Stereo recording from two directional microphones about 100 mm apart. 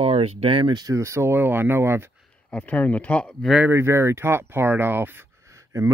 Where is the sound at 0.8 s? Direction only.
30° right (ahead or behind).